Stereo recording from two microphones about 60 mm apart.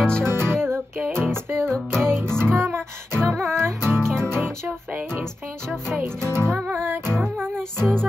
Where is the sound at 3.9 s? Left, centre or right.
Centre.